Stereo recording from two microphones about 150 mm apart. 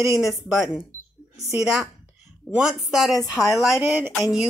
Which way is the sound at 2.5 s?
Centre (ahead or behind).